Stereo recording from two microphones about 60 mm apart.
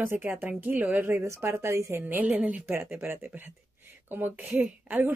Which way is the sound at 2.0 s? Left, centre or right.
Right.